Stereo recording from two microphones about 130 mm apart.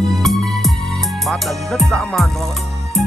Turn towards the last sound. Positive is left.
turn(degrees=0)  # may be behind; listen again after turning